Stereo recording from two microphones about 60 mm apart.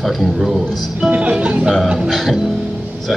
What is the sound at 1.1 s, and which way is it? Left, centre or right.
Music, right.